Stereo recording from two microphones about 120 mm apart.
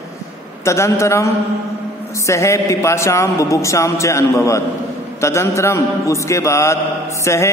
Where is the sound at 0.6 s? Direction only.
25° left (ahead or behind).